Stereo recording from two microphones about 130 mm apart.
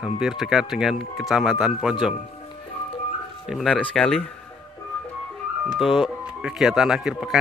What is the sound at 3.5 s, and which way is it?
Speech, centre (ahead or behind).